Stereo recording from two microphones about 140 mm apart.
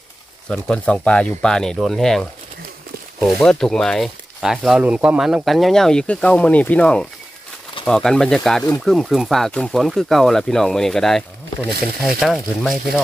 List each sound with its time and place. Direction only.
0.5 s speech: 5° left (ahead or behind)